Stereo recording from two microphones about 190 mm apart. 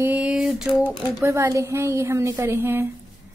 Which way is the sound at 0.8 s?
15° right (ahead or behind).